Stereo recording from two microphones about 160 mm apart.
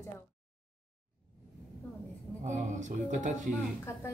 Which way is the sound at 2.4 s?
50° right (ahead or behind).